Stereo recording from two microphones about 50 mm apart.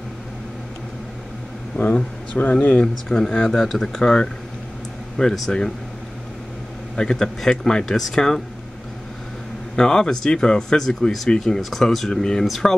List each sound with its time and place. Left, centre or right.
2.0 s speech: left; by 4.0 s centre
4.0 s speech: centre
5.1 s speech: centre
7.0 s speech: centre
9.8 s speech: centre
12.4 s speech: centre